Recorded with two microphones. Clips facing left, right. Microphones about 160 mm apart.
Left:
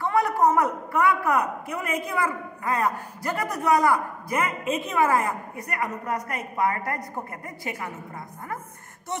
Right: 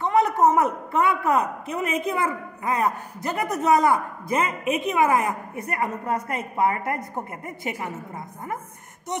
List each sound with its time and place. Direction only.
0.0 s a man's voice: 20° right (ahead or behind)